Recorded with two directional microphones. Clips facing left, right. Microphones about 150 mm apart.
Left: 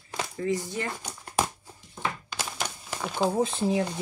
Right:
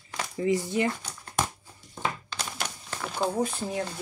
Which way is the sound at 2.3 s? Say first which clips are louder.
Left 1 dB; 5° left (ahead or behind).